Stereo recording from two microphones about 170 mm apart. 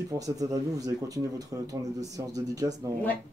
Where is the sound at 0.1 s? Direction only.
20° right (ahead or behind).